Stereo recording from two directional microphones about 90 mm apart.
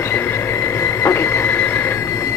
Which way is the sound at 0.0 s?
30° left (ahead or behind).